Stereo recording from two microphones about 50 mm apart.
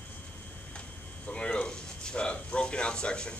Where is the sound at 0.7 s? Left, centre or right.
Left.